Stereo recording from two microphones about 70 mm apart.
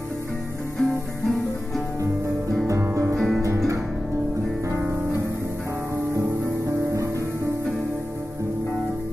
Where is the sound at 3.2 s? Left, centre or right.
Centre.